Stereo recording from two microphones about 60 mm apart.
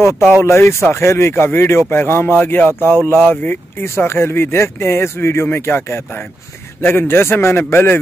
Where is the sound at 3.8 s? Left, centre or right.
Left.